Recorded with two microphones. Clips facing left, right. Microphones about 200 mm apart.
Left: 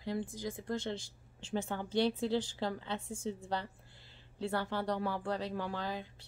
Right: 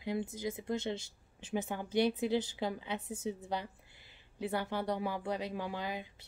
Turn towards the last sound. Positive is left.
turn(degrees=-15)  # may be behind; listen again after turning